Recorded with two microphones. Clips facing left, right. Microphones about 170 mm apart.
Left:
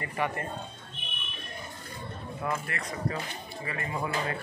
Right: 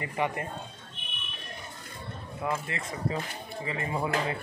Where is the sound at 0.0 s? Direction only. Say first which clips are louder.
Right 1 dB; 15° right (ahead or behind).